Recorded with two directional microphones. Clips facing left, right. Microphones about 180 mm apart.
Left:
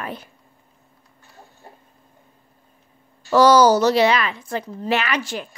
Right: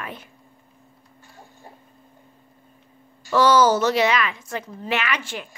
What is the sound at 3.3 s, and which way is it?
Speech, 40° left (ahead or behind).